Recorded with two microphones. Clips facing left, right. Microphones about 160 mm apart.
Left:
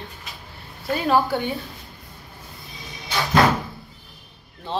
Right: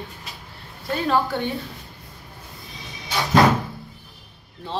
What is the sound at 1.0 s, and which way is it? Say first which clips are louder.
Speech: left 1 dB; 5° left (ahead or behind).